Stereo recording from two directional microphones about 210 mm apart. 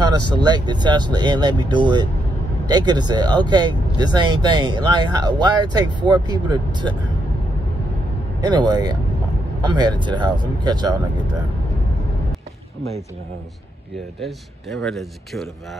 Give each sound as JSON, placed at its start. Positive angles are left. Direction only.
{"t": 0.2, "sound": "speech", "side_deg": -20}
{"t": 8.4, "sound": "speech", "side_deg": -20}
{"t": 14.2, "sound": "a man's voice", "side_deg": 0}